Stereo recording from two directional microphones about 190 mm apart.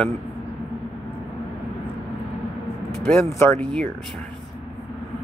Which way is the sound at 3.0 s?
5° left (ahead or behind).